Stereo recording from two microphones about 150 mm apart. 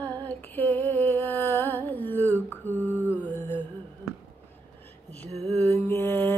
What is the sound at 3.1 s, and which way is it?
Music, 10° left (ahead or behind).